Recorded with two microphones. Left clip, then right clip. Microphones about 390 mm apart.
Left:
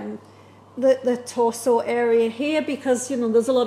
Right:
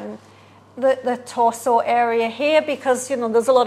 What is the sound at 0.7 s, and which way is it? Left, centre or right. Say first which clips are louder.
A woman's voice: even; right.